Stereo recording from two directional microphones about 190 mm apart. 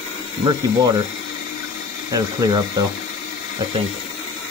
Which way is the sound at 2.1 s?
20° right (ahead or behind).